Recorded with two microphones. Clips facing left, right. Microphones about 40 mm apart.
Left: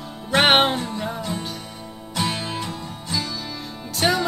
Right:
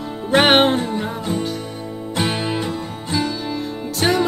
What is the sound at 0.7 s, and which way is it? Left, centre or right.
Music, right.